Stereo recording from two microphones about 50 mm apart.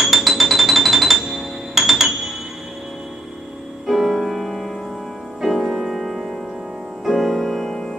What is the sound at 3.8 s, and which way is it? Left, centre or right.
Music, centre.